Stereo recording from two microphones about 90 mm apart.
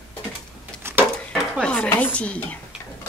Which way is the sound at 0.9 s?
25° right (ahead or behind).